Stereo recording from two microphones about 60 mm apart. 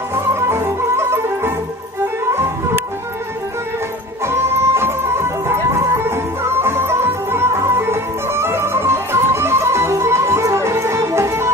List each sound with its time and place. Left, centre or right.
0.1 s music: right
4.3 s music: right